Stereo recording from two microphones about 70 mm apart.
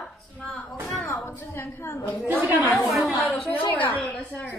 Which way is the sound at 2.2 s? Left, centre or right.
Right.